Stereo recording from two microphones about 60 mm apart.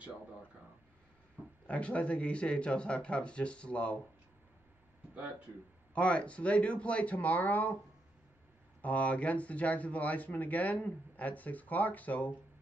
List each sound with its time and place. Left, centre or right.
1.4 s speech: right
1.7 s speech: left
5.9 s speech: left
8.8 s speech: left